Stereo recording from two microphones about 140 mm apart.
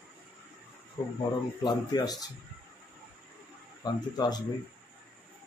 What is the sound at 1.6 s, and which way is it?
Speech, 30° left (ahead or behind).